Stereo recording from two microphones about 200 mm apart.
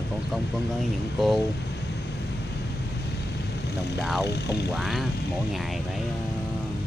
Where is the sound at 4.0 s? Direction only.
Centre (ahead or behind).